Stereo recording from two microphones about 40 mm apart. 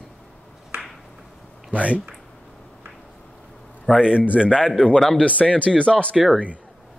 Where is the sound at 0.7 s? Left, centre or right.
Right.